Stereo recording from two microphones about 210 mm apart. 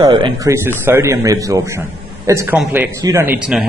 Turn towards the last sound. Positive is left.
turn(degrees=-5)  # may be behind; listen again after turning